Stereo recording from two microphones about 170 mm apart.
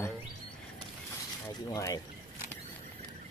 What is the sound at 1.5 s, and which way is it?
Speech, 20° left (ahead or behind).